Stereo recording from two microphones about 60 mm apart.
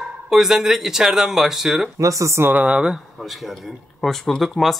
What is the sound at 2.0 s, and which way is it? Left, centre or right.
Speech, right.